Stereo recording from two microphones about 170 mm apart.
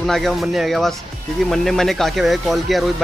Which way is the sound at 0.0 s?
Centre (ahead or behind).